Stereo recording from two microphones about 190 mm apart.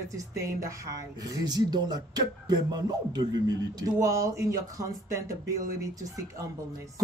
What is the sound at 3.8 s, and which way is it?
Speech, 15° right (ahead or behind).